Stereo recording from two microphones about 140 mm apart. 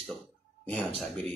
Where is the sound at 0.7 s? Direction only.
Centre (ahead or behind).